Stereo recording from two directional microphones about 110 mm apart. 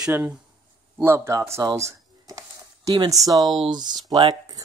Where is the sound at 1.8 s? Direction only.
30° right (ahead or behind).